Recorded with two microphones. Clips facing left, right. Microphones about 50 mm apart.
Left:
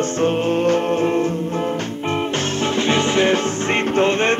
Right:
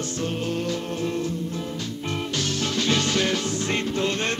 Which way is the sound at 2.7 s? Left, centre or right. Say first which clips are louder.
Left 6 dB; left.